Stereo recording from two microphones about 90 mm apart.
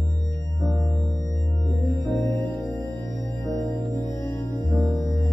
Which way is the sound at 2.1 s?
30° left (ahead or behind).